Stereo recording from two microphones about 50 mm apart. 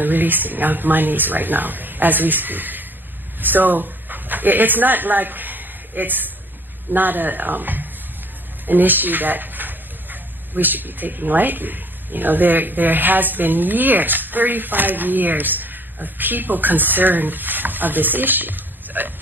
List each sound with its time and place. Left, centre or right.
0.0 s speech: right